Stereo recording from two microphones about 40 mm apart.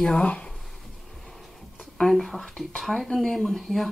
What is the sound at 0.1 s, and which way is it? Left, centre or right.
Speech, left.